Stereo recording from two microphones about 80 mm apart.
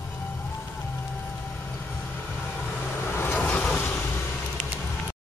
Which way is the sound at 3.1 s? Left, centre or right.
Left.